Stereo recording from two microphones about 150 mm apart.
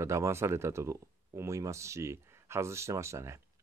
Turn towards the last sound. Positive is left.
turn(degrees=-20)  # may be behind; listen again after turning